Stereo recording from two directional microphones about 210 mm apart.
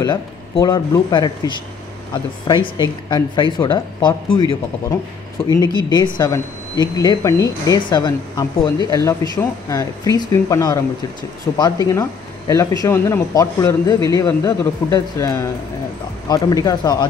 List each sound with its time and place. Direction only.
0.0 s speech: 15° left (ahead or behind)